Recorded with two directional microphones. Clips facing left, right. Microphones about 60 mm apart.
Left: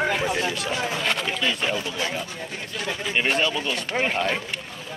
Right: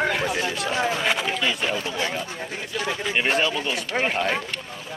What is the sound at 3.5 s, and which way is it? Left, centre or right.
Speech, centre.